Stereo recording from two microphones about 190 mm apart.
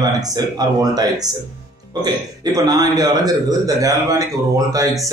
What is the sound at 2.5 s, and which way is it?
Speech, 20° right (ahead or behind).